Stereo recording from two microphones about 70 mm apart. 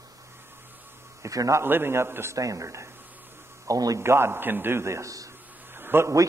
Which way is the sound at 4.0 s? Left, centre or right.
Right.